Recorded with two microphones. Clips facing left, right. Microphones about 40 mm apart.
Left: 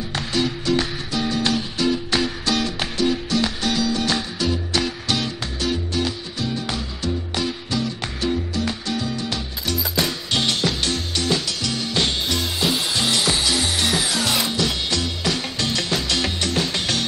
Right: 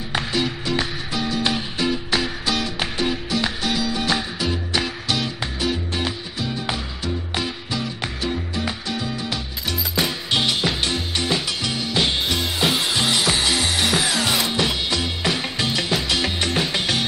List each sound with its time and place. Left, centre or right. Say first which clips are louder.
0.1 s music: right 1 dB; centre